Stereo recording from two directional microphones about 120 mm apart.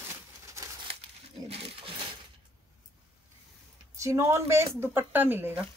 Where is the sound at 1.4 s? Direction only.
50° right (ahead or behind).